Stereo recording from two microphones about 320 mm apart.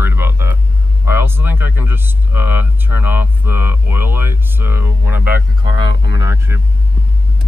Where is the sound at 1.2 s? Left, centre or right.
Centre.